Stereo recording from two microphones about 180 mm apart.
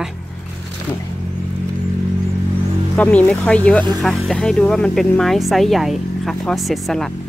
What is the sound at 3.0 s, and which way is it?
Speech, 10° left (ahead or behind).